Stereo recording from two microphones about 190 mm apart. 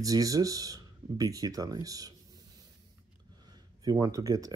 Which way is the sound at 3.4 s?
20° right (ahead or behind).